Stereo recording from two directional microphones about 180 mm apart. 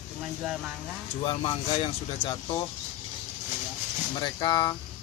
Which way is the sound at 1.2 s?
30° left (ahead or behind).